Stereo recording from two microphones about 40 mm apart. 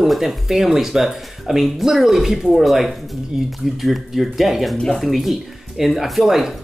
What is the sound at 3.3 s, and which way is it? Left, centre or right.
Speech, centre.